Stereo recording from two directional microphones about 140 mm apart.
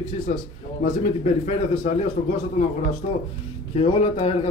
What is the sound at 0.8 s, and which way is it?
A man's voice, 60° left (ahead or behind).